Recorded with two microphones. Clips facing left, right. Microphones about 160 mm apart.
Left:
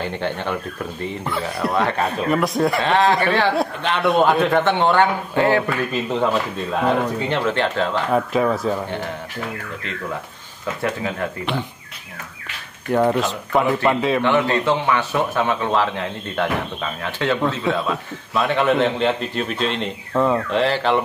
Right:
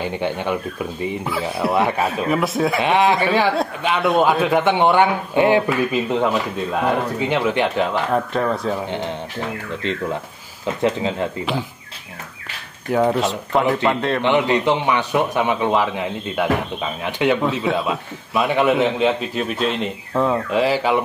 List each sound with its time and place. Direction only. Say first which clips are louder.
0.0 s a man's voice: right 2 dB; 10° right (ahead or behind)
2.8 s a man's voice: right 2 dB; 15° right (ahead or behind)
8.1 s a man's voice: left 1 dB; 5° left (ahead or behind)
10.8 s speech: right 4 dB; 20° right (ahead or behind)
12.9 s a man's voice: even; centre (ahead or behind)
14.2 s a man's voice: right 5 dB; 20° right (ahead or behind)
17.4 s a man's voice: right 1 dB; 5° right (ahead or behind)